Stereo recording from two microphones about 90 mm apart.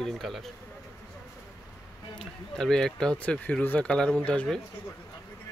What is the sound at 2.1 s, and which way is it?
Speech, 5° left (ahead or behind).